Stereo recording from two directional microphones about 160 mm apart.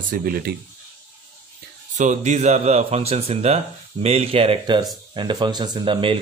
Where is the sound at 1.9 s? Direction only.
50° right (ahead or behind).